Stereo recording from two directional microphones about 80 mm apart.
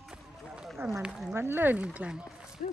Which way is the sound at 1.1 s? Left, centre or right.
Centre.